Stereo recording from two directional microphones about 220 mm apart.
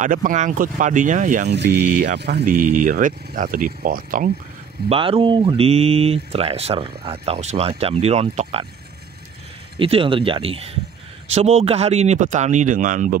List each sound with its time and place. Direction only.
0.0 s speech: 35° right (ahead or behind)
1.5 s mantra: 50° right (ahead or behind)
2.8 s speech: 35° right (ahead or behind)
4.8 s speech: 25° right (ahead or behind)
9.8 s speech: 25° right (ahead or behind)